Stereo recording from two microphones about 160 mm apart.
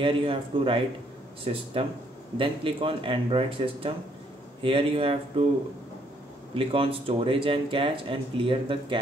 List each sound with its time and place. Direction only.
0.0 s speech: 35° right (ahead or behind)